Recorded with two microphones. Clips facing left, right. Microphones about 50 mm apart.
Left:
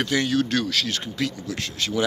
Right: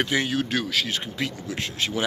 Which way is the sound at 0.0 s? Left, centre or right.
Centre.